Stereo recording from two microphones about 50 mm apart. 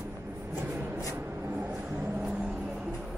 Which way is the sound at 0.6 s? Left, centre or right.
Right.